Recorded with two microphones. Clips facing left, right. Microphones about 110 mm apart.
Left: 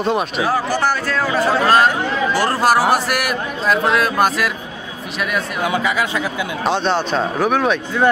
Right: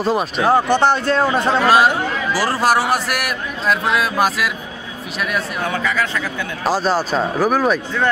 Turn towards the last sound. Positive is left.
turn(degrees=-5)  # may be behind; listen again after turning